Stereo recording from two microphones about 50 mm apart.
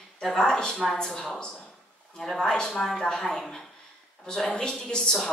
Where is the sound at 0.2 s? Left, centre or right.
Centre.